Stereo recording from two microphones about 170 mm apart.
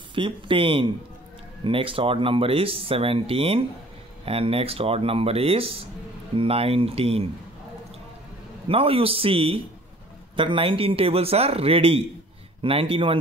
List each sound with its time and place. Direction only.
0.1 s speech: 30° right (ahead or behind)
8.6 s speech: 35° right (ahead or behind)